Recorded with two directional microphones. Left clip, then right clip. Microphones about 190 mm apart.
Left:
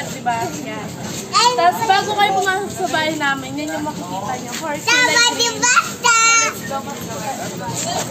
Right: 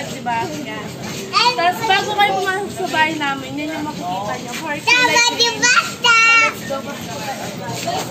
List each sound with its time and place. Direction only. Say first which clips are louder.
1.3 s a woman's voice: left 1 dB; 10° left (ahead or behind)
4.8 s a child's voice: right 1 dB; 40° left (ahead or behind); by 6.5 s 5° left (ahead or behind)